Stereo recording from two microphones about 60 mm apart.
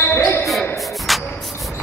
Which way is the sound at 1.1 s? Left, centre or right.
Centre.